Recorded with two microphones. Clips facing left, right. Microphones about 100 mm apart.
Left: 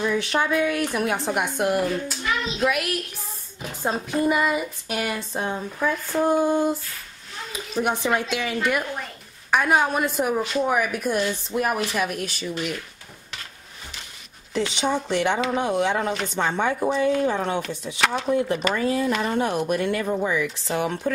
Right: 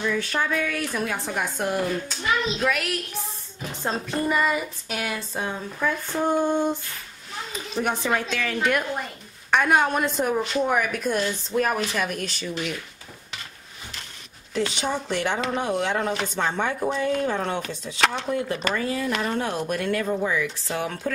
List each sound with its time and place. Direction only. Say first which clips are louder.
0.3 s a woman's voice: left 4 dB; 15° left (ahead or behind)
1.7 s a child's voice: left 3 dB; 5° left (ahead or behind)
14.6 s a woman's voice: left 2 dB; 15° left (ahead or behind)
18.8 s speech: left 4 dB; 20° left (ahead or behind)
19.0 s a woman's voice: left 3 dB; centre (ahead or behind); by 21.1 s 20° left (ahead or behind)